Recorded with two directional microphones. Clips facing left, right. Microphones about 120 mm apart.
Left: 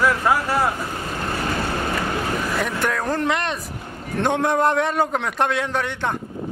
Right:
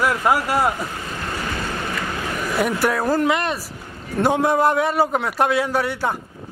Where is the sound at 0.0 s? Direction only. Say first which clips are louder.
Even; 15° right (ahead or behind).